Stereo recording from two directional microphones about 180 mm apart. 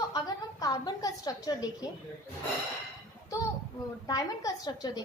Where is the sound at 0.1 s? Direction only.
20° left (ahead or behind).